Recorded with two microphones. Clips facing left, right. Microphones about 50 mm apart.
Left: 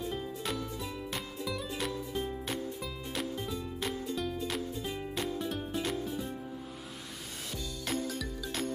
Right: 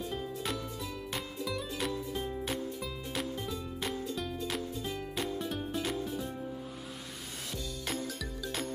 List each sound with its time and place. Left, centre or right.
0.0 s music: centre
7.8 s music: centre